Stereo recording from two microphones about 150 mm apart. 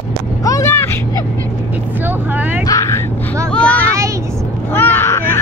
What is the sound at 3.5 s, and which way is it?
Vehicle, 10° left (ahead or behind).